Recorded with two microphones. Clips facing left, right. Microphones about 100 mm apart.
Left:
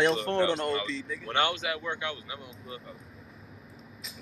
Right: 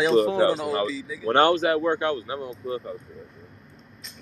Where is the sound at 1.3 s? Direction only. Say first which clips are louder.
Right 10 dB; 40° right (ahead or behind).